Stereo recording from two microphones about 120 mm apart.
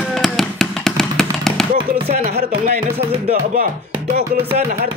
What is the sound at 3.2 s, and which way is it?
Speech, 90° right.